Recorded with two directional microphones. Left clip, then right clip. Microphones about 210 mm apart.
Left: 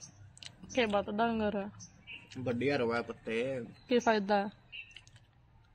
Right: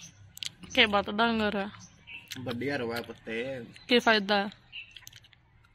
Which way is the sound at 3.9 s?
Centre (ahead or behind).